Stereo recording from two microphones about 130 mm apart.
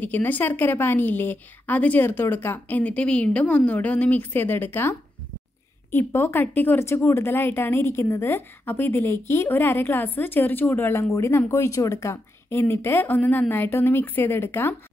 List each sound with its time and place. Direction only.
0.0 s speech: 15° left (ahead or behind)